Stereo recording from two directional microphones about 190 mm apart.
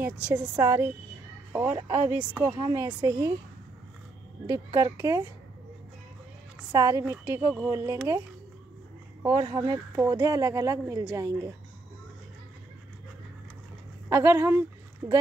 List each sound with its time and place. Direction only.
0.0 s speech: 5° right (ahead or behind)
2.5 s speech: 20° right (ahead or behind)
4.5 s speech: 20° right (ahead or behind)
6.7 s speech: 20° right (ahead or behind)
9.2 s speech: 25° right (ahead or behind)
14.0 s speech: 15° right (ahead or behind)